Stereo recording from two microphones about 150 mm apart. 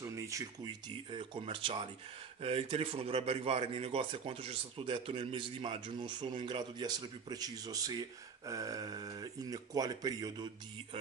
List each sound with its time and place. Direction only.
0.0 s a man's voice: 20° right (ahead or behind)